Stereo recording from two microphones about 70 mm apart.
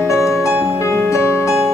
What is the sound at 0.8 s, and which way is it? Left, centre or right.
Music, left.